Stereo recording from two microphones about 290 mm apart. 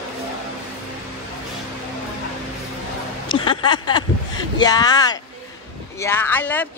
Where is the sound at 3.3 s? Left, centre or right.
Centre.